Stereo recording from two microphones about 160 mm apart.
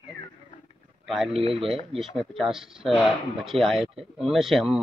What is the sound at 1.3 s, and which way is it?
Speech, 35° right (ahead or behind).